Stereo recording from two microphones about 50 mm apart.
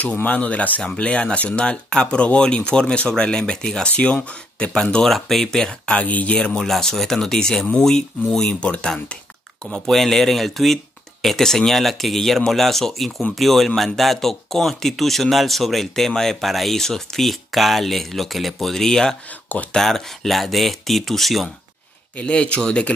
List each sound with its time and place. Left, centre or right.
0.2 s speech: left; by 3.9 s centre
3.9 s speech: left
4.9 s speech: centre
5.9 s speech: left
6.6 s speech: centre
9.8 s speech: centre
22.1 s speech: left